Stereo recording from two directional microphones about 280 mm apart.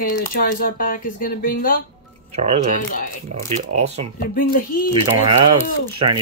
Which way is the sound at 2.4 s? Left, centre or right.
Right.